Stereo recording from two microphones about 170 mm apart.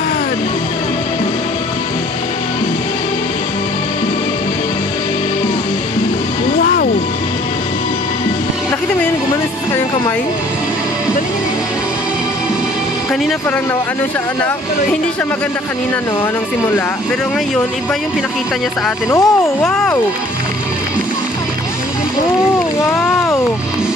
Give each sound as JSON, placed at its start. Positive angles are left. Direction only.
{"t": 6.6, "sound": "music", "side_deg": 60}
{"t": 19.0, "sound": "speech", "side_deg": 20}
{"t": 19.6, "sound": "speech", "side_deg": 10}